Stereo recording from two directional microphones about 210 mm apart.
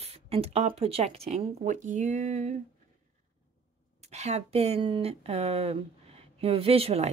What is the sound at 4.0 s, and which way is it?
A woman's voice, 30° right (ahead or behind).